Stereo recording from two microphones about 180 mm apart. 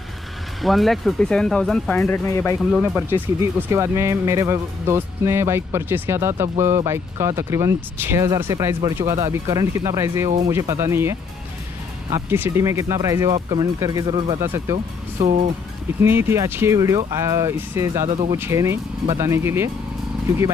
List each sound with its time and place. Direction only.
0.6 s speech: centre (ahead or behind)
3.1 s speech: 15° right (ahead or behind)
14.4 s speech: 15° right (ahead or behind)
15.1 s speech: 40° right (ahead or behind)
16.0 s speech: 15° right (ahead or behind)